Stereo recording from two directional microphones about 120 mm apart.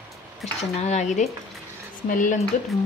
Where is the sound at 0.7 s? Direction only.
70° left (ahead or behind).